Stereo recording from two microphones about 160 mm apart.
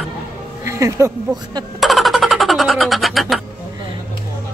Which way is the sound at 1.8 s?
Centre (ahead or behind).